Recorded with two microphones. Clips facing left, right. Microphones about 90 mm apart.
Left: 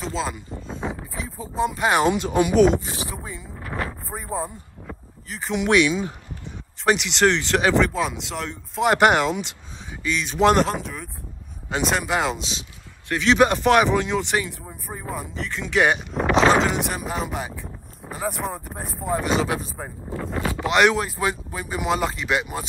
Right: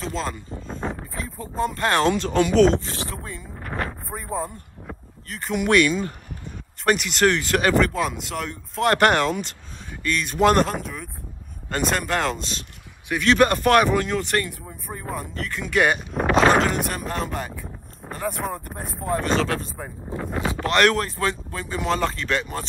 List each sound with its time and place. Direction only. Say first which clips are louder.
0.0 s speech: left 1 dB; 5° left (ahead or behind)
0.6 s a sound: even; centre (ahead or behind)
1.1 s speech: left 1 dB; centre (ahead or behind)
3.6 s a sound: even; 40° right (ahead or behind)
4.1 s a sound: even; 10° left (ahead or behind)
4.8 s speech: even; centre (ahead or behind)
20.3 s speech: even; 20° right (ahead or behind)
20.6 s speech: left 1 dB; 5° left (ahead or behind)
21.2 s speech: even; 15° left (ahead or behind)